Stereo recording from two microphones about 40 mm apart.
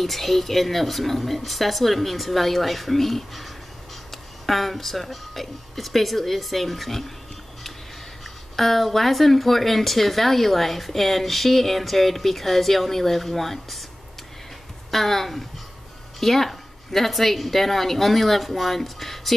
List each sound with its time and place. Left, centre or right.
0.0 s speech: centre
8.5 s speech: centre
14.9 s speech: centre